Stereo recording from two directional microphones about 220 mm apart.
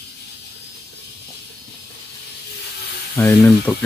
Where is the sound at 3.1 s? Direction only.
10° left (ahead or behind).